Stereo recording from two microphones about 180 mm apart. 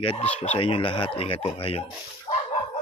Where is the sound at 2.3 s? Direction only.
30° left (ahead or behind).